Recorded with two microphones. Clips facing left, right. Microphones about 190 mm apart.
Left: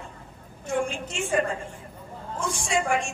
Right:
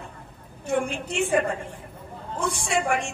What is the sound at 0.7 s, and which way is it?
Speech, 60° right (ahead or behind).